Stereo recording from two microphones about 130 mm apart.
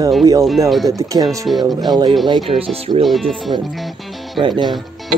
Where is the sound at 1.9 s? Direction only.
30° right (ahead or behind).